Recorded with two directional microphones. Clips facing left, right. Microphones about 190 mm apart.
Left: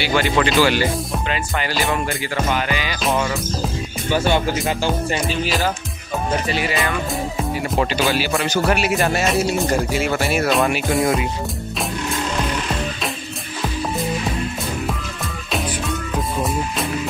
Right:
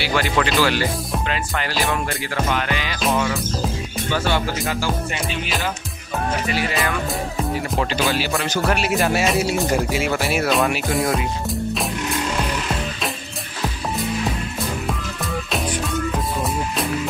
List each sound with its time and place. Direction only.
0.0 s speech: centre (ahead or behind)
4.1 s music: 15° left (ahead or behind)
5.1 s music: 35° left (ahead or behind)
6.7 s speech: centre (ahead or behind)